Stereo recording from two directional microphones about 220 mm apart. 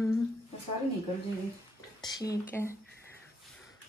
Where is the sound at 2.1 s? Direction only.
15° left (ahead or behind).